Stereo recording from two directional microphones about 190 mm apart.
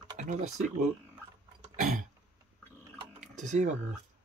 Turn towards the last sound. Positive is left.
turn(degrees=-40)  # may be behind; listen again after turning